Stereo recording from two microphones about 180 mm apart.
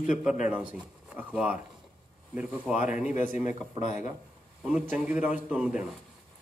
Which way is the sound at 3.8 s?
45° left (ahead or behind).